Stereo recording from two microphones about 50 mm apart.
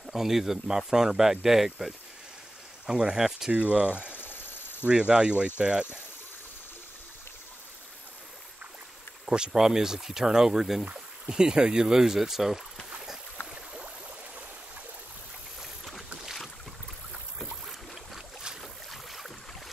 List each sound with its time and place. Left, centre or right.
0.0 s speech: centre
3.5 s speech: right
4.2 s a sound: left
4.8 s speech: right
9.2 s speech: centre
17.6 s boat: centre
18.6 s boat: centre